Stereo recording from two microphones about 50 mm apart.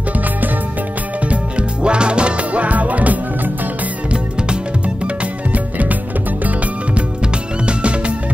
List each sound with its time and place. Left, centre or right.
1.2 s music: right
4.1 s music: right
7.6 s music: right